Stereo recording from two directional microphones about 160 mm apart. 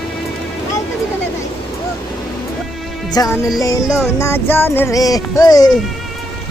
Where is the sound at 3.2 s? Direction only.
25° left (ahead or behind).